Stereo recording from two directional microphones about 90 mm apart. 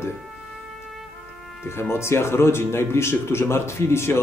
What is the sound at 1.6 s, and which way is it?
Speech, 25° left (ahead or behind).